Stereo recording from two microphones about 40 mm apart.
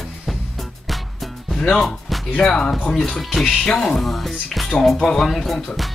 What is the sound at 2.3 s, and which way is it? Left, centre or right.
Speech, left.